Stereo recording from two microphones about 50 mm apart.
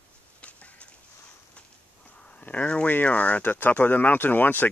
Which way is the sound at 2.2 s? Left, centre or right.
Left.